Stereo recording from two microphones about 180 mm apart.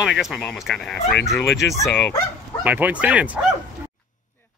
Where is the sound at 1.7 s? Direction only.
15° left (ahead or behind).